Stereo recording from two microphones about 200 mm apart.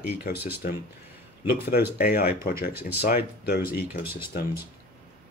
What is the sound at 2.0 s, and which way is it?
Speech, 50° left (ahead or behind).